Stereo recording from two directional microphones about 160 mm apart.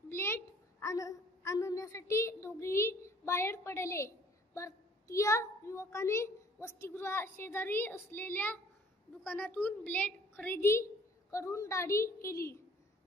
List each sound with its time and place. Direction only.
0.1 s a woman's voice: 15° left (ahead or behind)